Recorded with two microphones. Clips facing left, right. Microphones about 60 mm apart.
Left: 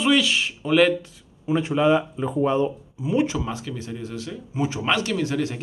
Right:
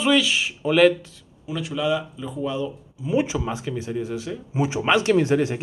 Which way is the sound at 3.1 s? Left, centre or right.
Centre.